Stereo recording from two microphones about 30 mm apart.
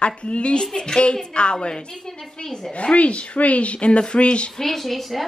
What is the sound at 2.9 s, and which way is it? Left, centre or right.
Speech, left.